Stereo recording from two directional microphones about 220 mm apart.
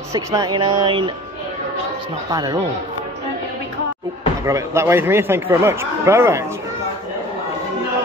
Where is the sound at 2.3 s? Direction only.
15° right (ahead or behind).